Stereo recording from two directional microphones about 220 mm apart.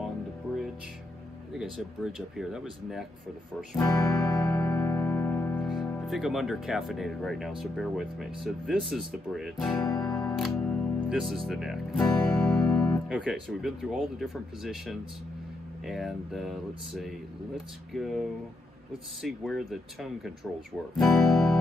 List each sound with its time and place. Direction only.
1.5 s speech: 5° right (ahead or behind)
3.7 s music: 5° left (ahead or behind)
5.9 s speech: 5° left (ahead or behind)
9.8 s music: 15° left (ahead or behind)
10.3 s speech: centre (ahead or behind)